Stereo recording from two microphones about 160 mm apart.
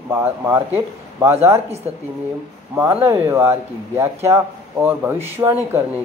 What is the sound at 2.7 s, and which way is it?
Speech, 15° right (ahead or behind).